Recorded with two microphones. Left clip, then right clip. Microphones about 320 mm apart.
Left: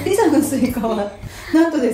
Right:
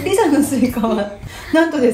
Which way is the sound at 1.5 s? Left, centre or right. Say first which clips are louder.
Right 1 dB; right.